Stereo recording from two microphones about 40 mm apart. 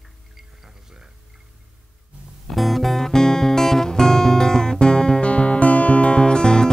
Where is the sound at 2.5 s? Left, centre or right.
Centre.